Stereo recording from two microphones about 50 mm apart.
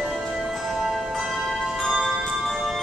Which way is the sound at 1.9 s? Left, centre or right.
Centre.